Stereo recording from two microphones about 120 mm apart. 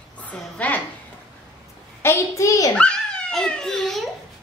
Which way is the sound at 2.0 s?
25° left (ahead or behind).